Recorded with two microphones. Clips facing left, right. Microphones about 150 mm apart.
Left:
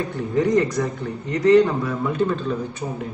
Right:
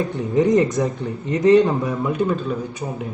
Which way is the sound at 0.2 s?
20° right (ahead or behind).